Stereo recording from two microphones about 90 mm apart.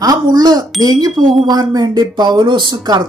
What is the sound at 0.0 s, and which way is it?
Speech, 50° right (ahead or behind).